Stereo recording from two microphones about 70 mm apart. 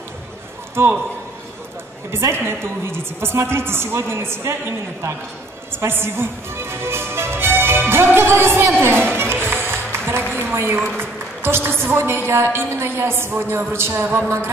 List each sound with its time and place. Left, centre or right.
0.8 s a woman's voice: right
2.0 s a woman's voice: right
5.7 s music: right
10.3 s a sound: right
11.0 s a woman's voice: right